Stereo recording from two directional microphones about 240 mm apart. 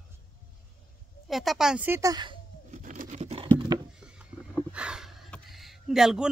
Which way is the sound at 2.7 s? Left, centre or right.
Right.